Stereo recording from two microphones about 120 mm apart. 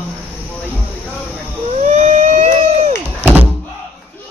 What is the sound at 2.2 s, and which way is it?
Siren, 90° right.